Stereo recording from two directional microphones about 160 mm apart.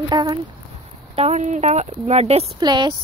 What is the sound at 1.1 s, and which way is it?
Speech, 40° right (ahead or behind).